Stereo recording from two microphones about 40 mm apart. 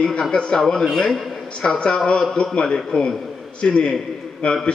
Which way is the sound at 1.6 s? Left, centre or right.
Left.